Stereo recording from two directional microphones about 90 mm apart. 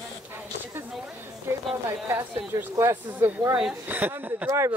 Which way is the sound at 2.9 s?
25° right (ahead or behind).